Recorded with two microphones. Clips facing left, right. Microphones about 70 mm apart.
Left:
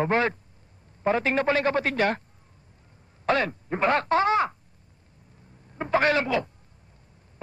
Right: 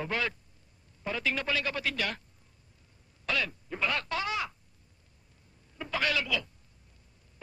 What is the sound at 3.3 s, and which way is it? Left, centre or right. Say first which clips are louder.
Speech: left 9 dB; left.